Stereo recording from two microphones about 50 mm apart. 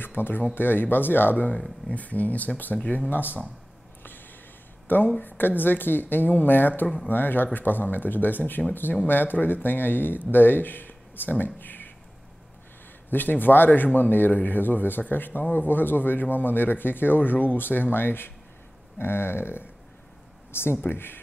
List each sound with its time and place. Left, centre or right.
0.0 s speech: left
4.8 s speech: left
13.1 s speech: left
20.8 s speech: left